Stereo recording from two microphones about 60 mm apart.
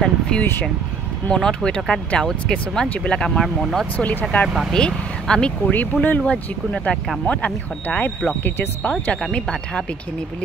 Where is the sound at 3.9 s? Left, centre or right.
Left.